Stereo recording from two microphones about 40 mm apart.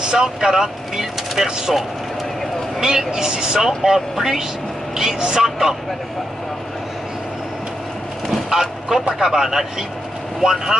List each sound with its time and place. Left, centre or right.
0.0 s speech: centre
8.3 s a sound: centre
9.2 s speech: centre